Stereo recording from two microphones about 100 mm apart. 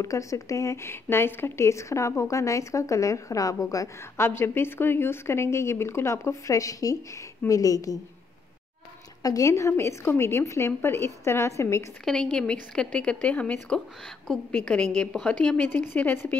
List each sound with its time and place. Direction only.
0.0 s a woman's voice: 30° left (ahead or behind)
9.2 s speech: 35° left (ahead or behind)
12.0 s a woman's voice: 5° left (ahead or behind)